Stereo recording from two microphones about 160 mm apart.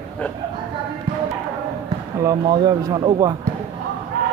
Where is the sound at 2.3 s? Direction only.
25° right (ahead or behind).